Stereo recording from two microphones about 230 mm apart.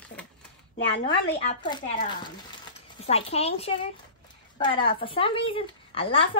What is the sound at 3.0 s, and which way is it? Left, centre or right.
A woman's voice, left.